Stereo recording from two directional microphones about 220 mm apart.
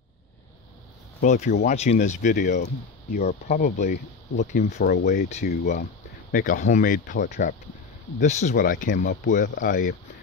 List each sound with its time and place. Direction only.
1.2 s speech: 30° left (ahead or behind)
4.6 s speech: 45° left (ahead or behind)